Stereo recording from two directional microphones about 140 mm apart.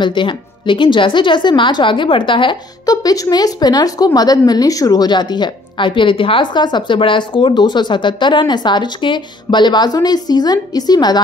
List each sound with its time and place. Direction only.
0.0 s a woman's voice: 35° left (ahead or behind)